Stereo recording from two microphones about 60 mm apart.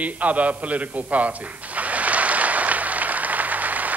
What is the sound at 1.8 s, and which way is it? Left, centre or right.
Applause, right.